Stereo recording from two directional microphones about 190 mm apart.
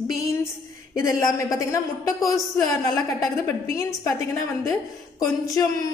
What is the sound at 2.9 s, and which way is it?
A woman's voice, 15° left (ahead or behind).